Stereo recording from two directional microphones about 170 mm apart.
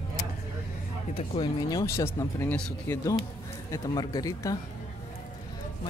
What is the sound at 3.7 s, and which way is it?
Speech, 25° left (ahead or behind).